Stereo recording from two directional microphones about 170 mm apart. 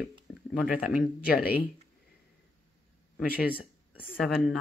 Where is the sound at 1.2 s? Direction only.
60° left (ahead or behind).